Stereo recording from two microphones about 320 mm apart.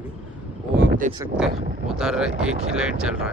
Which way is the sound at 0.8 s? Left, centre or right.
Right.